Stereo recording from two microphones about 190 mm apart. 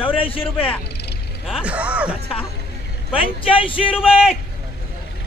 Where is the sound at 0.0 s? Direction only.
30° left (ahead or behind).